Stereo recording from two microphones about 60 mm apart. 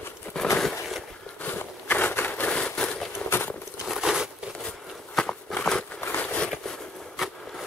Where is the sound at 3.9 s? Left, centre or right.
Centre.